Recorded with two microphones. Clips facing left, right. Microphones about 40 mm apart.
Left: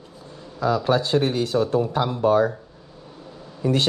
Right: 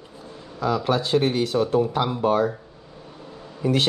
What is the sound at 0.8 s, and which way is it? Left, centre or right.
Speech, right.